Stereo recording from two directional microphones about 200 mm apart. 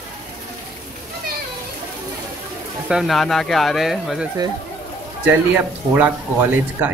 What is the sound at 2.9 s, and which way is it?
Speech, centre (ahead or behind).